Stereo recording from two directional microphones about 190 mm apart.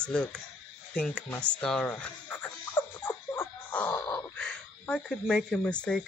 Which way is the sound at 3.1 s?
15° left (ahead or behind).